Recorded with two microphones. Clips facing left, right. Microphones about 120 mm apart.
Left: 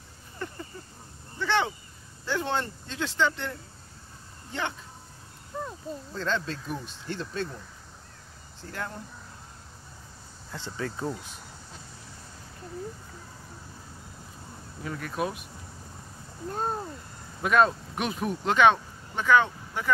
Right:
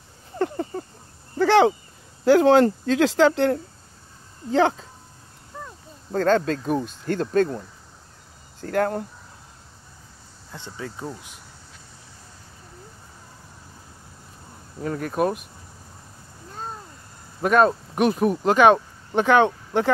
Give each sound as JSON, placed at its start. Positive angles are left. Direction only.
{"t": 0.4, "sound": "a sound", "side_deg": -65}
{"t": 1.4, "sound": "a sound", "side_deg": -90}
{"t": 2.2, "sound": "speech", "side_deg": -90}
{"t": 4.6, "sound": "speech", "side_deg": -90}
{"t": 5.5, "sound": "a sound", "side_deg": 15}
{"t": 6.1, "sound": "speech", "side_deg": -50}
{"t": 10.5, "sound": "speech", "side_deg": -20}
{"t": 14.8, "sound": "speech", "side_deg": -45}
{"t": 17.4, "sound": "speech", "side_deg": -40}
{"t": 19.1, "sound": "speech", "side_deg": -70}